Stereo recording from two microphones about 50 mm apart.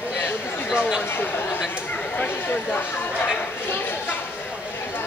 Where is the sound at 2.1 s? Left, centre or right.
Left.